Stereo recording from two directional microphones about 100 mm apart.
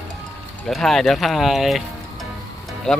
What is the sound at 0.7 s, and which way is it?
Speech, 5° left (ahead or behind).